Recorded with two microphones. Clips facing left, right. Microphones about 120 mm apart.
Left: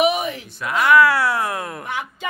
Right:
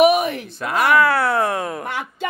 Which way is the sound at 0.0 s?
60° right (ahead or behind).